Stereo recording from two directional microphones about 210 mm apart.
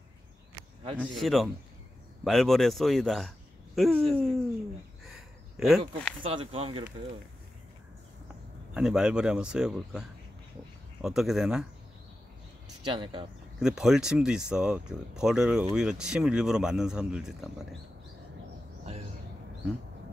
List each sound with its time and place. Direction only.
0.9 s speech: centre (ahead or behind)
5.0 s a sound: centre (ahead or behind)
6.2 s speech: 25° right (ahead or behind)
8.7 s speech: 5° right (ahead or behind)
12.9 s speech: 25° right (ahead or behind)
13.6 s speech: 5° right (ahead or behind)